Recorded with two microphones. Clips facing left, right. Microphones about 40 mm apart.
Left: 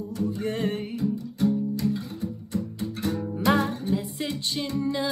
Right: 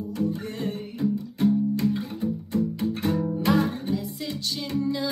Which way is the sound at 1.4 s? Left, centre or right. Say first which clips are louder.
Right 2 dB; right.